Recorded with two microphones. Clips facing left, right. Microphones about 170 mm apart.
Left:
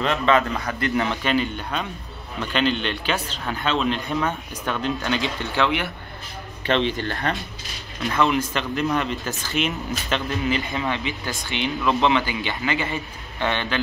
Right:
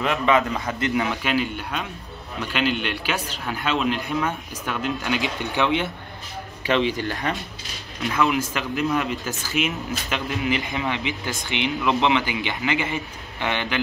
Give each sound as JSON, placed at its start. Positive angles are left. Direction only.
{"t": 0.0, "sound": "speech", "side_deg": -10}
{"t": 0.9, "sound": "speech", "side_deg": -10}